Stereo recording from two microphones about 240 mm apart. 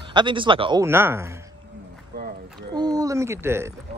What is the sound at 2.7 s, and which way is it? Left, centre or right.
Speech, centre.